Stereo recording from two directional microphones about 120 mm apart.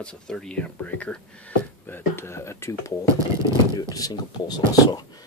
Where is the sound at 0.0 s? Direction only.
5° left (ahead or behind); by 2.9 s 25° left (ahead or behind).